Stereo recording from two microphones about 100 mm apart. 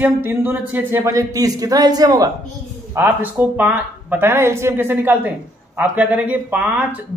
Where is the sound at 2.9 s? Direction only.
20° right (ahead or behind).